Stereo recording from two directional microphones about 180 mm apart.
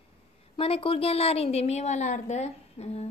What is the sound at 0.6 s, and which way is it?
A woman's voice, 30° left (ahead or behind).